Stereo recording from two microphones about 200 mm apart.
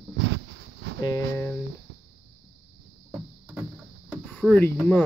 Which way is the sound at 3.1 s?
10° right (ahead or behind).